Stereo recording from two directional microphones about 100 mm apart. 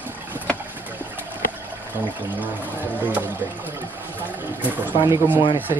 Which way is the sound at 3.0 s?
15° right (ahead or behind).